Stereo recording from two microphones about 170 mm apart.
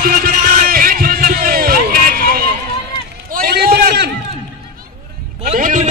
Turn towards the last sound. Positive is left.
turn(degrees=-45)  # may be behind; listen again after turning